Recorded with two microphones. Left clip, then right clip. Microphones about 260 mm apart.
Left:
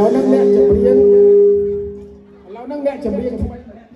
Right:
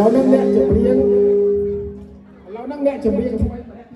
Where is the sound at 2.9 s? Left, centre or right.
Left.